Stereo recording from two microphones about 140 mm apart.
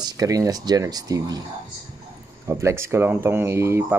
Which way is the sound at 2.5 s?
20° right (ahead or behind).